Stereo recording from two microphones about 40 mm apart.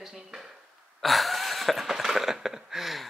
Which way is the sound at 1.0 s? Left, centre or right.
Centre.